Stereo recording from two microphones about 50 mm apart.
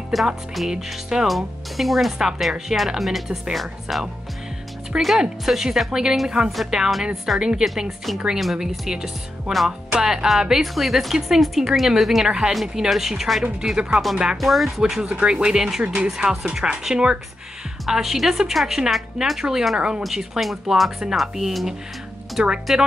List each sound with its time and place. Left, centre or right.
0.1 s speech: centre
2.1 s speech: centre
2.5 s speech: centre
5.2 s speech: centre
6.5 s speech: centre
12.3 s speech: centre
14.3 s speech: centre
14.8 s speech: centre
15.8 s speech: right
17.8 s speech: centre
22.4 s speech: centre